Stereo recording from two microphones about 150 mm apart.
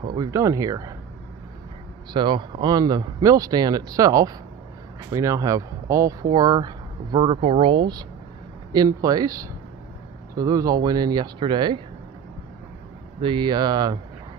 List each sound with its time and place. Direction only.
0.1 s speech: 25° right (ahead or behind)
2.1 s speech: 30° right (ahead or behind)
13.2 s speech: 30° right (ahead or behind)